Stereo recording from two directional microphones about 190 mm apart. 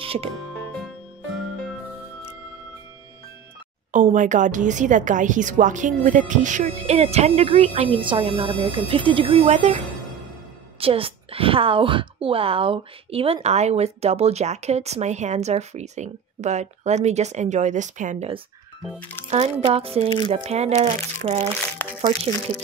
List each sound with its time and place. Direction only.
0.0 s music: 30° right (ahead or behind)
3.9 s a woman's voice: 40° right (ahead or behind)
10.8 s a woman's voice: 30° right (ahead or behind)
18.9 s speech: 10° left (ahead or behind)
19.2 s a woman's voice: 30° right (ahead or behind)